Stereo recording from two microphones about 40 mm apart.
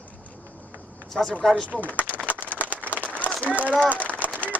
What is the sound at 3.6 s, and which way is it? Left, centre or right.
Speech, left.